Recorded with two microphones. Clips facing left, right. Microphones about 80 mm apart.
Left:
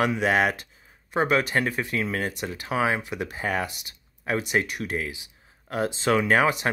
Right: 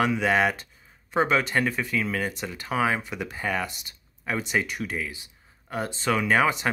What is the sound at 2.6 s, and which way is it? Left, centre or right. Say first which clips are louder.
Speech: even; centre.